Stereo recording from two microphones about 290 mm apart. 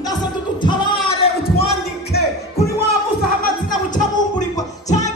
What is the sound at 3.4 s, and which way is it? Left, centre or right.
Music, left.